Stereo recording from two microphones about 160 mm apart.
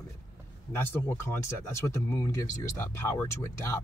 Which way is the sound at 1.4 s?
15° left (ahead or behind).